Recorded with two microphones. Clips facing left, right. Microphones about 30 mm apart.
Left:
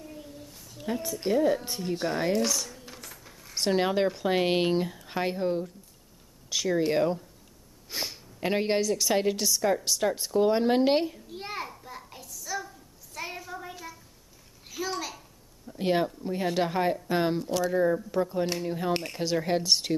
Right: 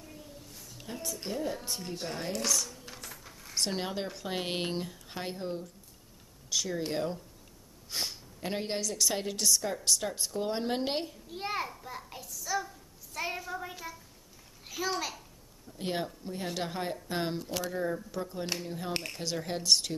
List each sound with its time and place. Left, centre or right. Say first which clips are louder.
0.1 s a sound: left 5 dB; centre
0.9 s a woman's voice: left 7 dB; centre
1.3 s speech: left 11 dB; left
1.6 s a woman's voice: left 7 dB; centre
2.4 s a sound: left 2 dB; centre
3.8 s a woman's voice: left 10 dB; left
7.9 s a sound: left 2 dB; centre
8.4 s a woman's voice: left 8 dB; left
11.2 s a sound: right 1 dB; centre
15.8 s a woman's voice: left 8 dB; centre
18.4 s speech: left 7 dB; centre
18.7 s a woman's voice: left 7 dB; centre